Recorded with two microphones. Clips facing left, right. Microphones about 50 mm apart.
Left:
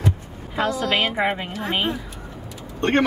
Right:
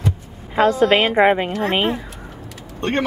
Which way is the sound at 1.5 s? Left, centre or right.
Right.